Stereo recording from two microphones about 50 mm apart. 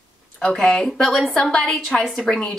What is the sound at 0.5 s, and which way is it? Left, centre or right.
A woman's voice, centre.